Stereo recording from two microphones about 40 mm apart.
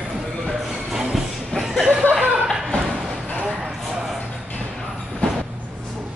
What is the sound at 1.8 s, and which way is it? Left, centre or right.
Chuckle, right.